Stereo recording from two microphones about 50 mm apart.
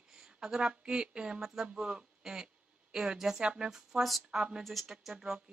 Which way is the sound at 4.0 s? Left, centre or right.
Centre.